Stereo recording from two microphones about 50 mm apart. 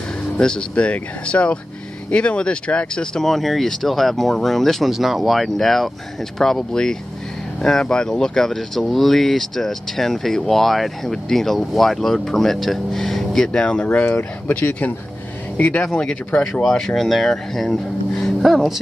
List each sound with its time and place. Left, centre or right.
0.4 s speech: centre
3.2 s speech: centre
13.5 s speech: centre
15.8 s speech: centre
18.4 s a sound: centre